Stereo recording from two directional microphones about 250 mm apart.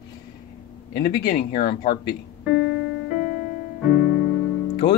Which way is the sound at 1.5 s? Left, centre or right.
Centre.